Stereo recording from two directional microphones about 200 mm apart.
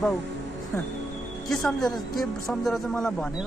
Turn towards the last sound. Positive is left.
turn(degrees=5)  # may be behind; listen again after turning